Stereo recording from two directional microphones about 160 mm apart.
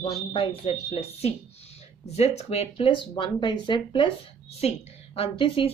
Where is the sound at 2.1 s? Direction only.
40° left (ahead or behind).